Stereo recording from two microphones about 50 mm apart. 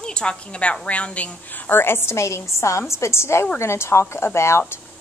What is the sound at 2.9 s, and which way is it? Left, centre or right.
A woman's voice, left.